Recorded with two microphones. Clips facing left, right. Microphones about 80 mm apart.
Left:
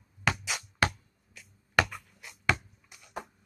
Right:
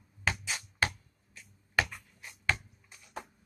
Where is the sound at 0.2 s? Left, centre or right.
Left.